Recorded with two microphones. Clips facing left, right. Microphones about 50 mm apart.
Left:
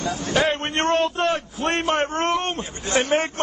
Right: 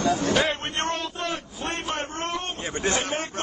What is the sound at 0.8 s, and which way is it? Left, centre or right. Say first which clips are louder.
A man's voice: left 12 dB; left.